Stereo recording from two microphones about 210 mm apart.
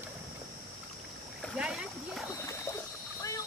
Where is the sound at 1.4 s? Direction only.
Centre (ahead or behind).